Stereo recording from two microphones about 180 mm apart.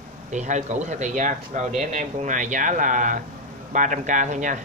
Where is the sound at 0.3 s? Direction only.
40° right (ahead or behind).